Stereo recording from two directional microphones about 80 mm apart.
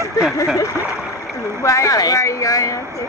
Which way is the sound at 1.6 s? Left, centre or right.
Left.